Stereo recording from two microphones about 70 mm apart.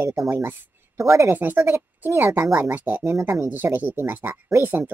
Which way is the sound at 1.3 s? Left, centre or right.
Right.